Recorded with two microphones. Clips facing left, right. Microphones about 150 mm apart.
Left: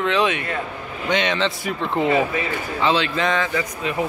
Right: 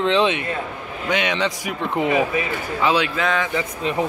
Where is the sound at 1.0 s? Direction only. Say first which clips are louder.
Left 1 dB; 10° right (ahead or behind).